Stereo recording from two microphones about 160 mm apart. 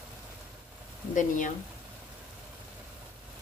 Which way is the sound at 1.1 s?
55° left (ahead or behind).